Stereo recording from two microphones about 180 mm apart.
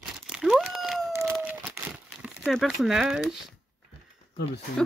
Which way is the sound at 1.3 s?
10° right (ahead or behind).